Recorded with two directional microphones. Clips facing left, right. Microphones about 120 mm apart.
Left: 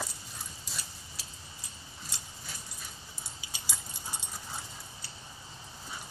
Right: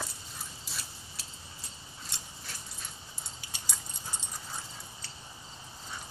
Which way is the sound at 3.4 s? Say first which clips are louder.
Even; centre (ahead or behind).